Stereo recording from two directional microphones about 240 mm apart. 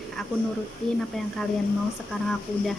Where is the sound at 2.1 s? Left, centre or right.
Centre.